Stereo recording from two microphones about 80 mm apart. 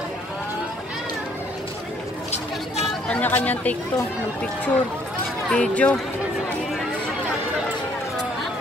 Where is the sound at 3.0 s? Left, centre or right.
Centre.